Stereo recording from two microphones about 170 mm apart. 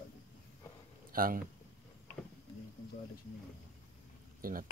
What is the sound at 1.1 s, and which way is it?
Speech, 55° right (ahead or behind).